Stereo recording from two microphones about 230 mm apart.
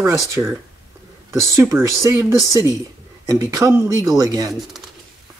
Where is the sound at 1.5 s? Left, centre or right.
Centre.